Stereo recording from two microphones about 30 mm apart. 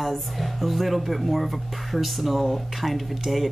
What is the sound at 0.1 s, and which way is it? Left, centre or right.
Speech, centre.